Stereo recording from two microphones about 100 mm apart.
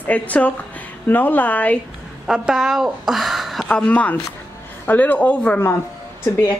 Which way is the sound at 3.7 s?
10° left (ahead or behind).